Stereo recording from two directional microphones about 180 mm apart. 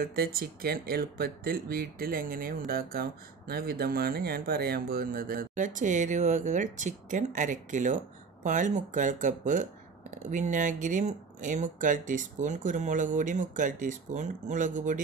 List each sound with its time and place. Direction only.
0.0 s speech: 60° right (ahead or behind)